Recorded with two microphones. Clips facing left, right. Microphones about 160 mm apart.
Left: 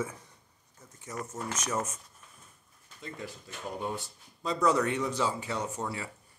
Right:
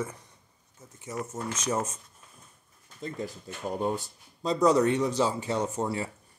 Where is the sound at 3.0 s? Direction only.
35° right (ahead or behind).